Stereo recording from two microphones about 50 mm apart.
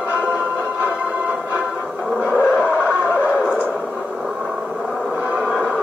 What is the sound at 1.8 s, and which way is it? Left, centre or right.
Music, centre.